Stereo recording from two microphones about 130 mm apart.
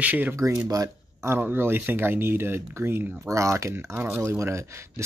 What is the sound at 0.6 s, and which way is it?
Speech, 25° right (ahead or behind).